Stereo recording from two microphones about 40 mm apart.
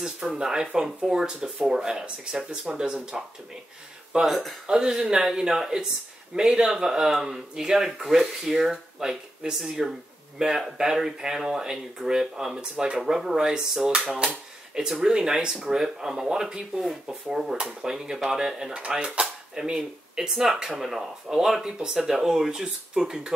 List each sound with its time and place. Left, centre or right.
0.2 s speech: centre
0.8 s speech: centre
4.3 s speech: centre
4.6 s speech: centre
13.0 s speech: centre
18.7 s speech: right
20.8 s speech: centre